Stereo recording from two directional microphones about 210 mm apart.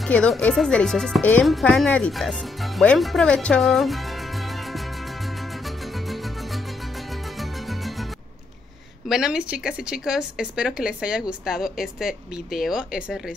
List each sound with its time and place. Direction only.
0.0 s a woman's voice: 5° left (ahead or behind)
9.1 s a woman's voice: 5° right (ahead or behind)